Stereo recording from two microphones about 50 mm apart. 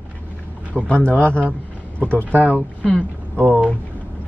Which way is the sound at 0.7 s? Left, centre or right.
Left.